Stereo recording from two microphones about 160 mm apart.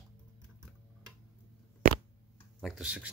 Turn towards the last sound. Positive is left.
turn(degrees=-5)  # may be behind; listen again after turning